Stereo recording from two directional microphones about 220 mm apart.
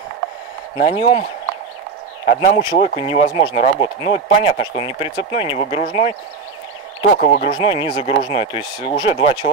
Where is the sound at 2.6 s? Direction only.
20° left (ahead or behind).